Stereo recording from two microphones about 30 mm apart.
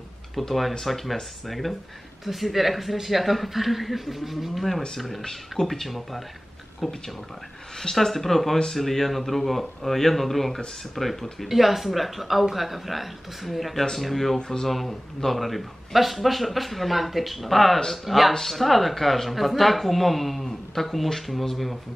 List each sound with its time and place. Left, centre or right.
0.4 s speech: centre
5.2 s speech: centre
5.7 s speech: centre
11.4 s speech: centre